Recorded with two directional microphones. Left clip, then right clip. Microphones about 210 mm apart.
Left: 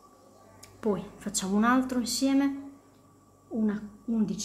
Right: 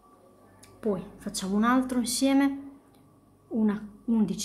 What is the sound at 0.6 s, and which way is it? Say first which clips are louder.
Speech: even; 5° left (ahead or behind).